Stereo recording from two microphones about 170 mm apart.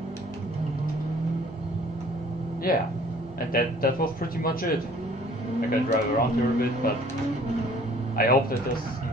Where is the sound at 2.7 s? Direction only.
60° left (ahead or behind).